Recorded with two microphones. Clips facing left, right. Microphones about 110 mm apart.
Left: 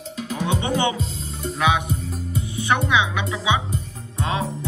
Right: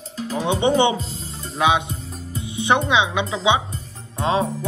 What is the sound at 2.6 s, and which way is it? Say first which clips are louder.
Speech: right 2 dB; 20° right (ahead or behind).